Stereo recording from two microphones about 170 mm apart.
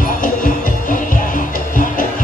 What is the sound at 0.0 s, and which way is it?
Music, 50° left (ahead or behind).